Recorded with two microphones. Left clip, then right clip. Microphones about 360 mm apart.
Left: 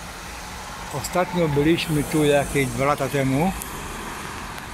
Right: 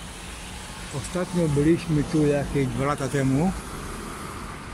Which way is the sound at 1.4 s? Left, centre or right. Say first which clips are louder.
Right 1 dB; left.